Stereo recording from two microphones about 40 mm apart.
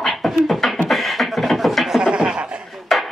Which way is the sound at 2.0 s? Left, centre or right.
Right.